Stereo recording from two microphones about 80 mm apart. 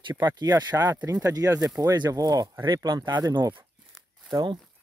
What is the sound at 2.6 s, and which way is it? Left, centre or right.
Speech, right.